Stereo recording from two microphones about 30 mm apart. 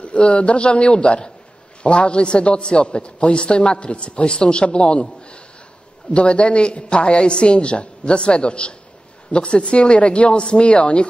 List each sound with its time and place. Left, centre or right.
0.0 s a man's voice: left